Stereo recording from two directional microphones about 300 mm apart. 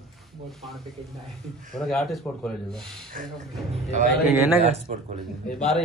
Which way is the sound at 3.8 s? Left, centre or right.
Right.